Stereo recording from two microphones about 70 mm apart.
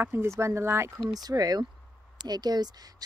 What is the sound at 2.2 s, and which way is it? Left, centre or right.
Speech, right.